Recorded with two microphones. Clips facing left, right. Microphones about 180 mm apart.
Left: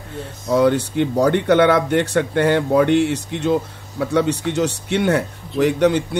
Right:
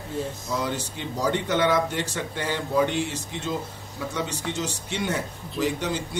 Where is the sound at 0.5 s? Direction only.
60° left (ahead or behind).